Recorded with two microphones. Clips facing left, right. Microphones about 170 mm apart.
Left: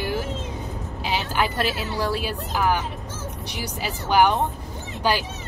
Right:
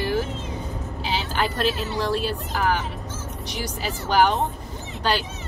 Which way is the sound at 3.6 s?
10° left (ahead or behind).